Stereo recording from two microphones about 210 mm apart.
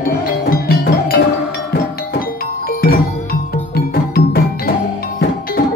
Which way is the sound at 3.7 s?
45° left (ahead or behind).